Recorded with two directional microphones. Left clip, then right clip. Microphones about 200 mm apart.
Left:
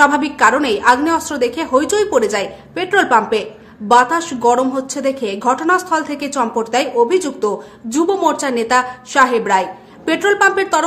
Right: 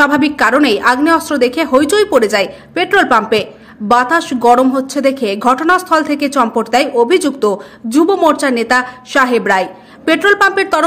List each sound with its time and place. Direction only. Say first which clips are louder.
0.0 s a woman's voice: right 1 dB; 25° right (ahead or behind)